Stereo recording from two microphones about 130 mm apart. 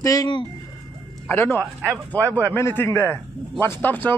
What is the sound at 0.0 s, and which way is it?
Speech, 25° left (ahead or behind).